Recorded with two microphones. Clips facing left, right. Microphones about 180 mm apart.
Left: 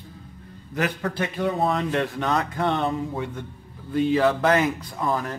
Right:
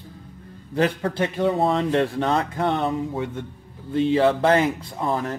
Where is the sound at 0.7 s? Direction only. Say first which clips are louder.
Right 4 dB; 30° right (ahead or behind).